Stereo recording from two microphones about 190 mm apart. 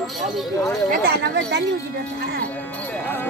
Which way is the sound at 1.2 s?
65° right (ahead or behind).